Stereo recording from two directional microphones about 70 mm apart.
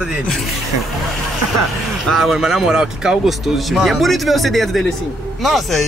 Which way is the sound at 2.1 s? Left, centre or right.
Centre.